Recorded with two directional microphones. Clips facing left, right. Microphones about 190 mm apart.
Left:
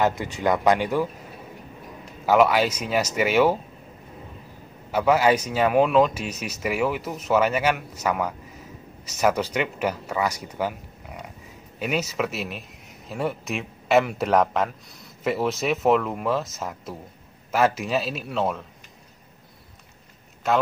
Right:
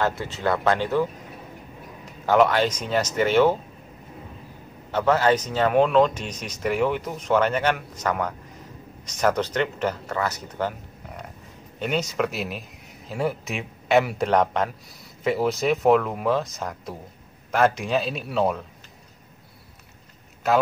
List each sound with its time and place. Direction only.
0.0 s speech: 15° left (ahead or behind)
2.2 s speech: 5° left (ahead or behind)
4.9 s speech: 10° left (ahead or behind)
11.8 s speech: 5° left (ahead or behind)
20.4 s speech: centre (ahead or behind)